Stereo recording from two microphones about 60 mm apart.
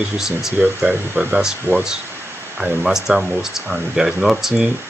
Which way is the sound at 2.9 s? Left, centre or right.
Centre.